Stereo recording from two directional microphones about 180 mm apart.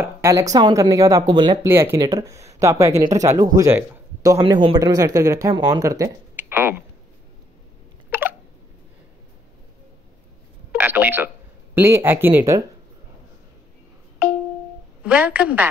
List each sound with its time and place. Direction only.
0.0 s speech: 15° right (ahead or behind)
4.4 s speech: 30° right (ahead or behind); by 6.8 s 10° right (ahead or behind)
8.1 s a sound: 10° right (ahead or behind)
10.7 s telephone: 10° right (ahead or behind)
11.7 s speech: 15° right (ahead or behind)
15.0 s speech: 5° right (ahead or behind)